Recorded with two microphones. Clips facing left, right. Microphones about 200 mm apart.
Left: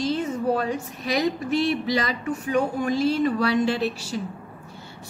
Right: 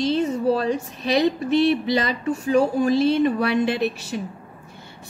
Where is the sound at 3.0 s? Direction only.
25° right (ahead or behind).